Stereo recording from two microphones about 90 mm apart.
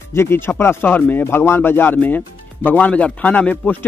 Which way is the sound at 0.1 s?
25° left (ahead or behind).